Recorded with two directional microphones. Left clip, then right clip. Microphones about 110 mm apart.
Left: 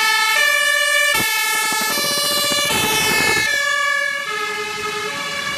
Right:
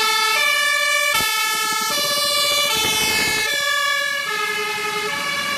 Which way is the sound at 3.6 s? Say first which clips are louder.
Left 1 dB; 20° right (ahead or behind).